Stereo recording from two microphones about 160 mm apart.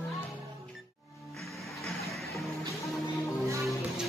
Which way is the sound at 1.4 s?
Centre (ahead or behind).